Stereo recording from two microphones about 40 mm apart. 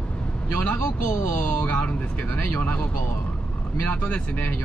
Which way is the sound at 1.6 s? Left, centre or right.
Left.